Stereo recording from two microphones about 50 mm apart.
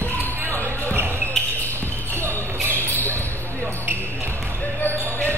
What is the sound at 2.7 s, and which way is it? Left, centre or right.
Basketball bounce, left.